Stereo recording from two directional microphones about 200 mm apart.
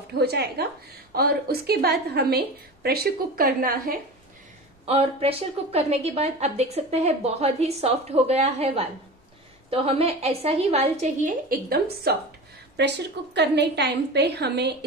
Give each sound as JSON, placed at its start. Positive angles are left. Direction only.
{"t": 0.1, "sound": "a woman's voice", "side_deg": -55}
{"t": 4.8, "sound": "a woman's voice", "side_deg": -30}